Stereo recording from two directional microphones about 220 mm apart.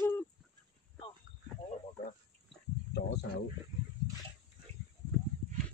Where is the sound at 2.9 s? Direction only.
50° left (ahead or behind).